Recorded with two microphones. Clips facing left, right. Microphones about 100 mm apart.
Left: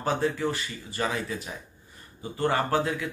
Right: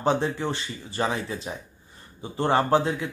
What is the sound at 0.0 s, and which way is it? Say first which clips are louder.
Speech: right 2 dB; 25° right (ahead or behind).